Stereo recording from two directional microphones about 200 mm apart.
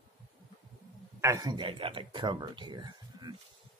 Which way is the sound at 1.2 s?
15° right (ahead or behind).